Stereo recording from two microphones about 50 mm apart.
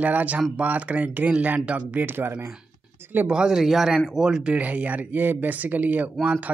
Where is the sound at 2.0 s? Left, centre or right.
Right.